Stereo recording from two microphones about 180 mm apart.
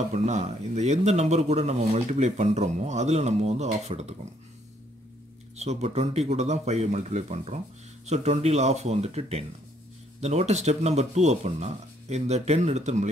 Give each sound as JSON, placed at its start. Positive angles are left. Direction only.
{"t": 0.1, "sound": "speech", "side_deg": -40}
{"t": 5.6, "sound": "speech", "side_deg": -35}